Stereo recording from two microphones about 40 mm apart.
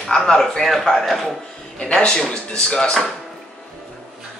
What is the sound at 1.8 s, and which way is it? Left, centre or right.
Speech, left.